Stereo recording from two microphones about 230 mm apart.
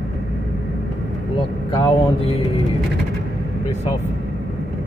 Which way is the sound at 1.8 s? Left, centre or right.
Left.